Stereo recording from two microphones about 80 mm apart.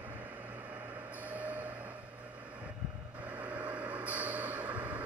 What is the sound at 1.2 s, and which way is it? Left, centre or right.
Music, centre.